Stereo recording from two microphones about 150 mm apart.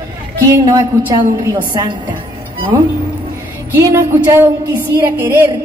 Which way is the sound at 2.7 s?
20° right (ahead or behind).